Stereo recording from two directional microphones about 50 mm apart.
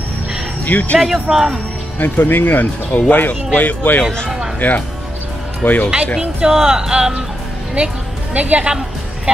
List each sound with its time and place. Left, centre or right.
0.7 s speech: left
0.9 s speech: centre
2.0 s speech: left
4.0 s speech: centre
4.6 s speech: left
6.1 s speech: centre
7.7 s a woman's voice: right